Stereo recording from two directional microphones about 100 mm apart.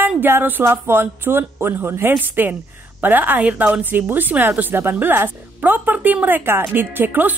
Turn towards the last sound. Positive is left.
turn(degrees=-20)  # may be behind; listen again after turning